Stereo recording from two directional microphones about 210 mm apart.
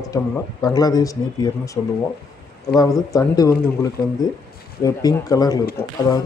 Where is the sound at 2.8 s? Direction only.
15° left (ahead or behind).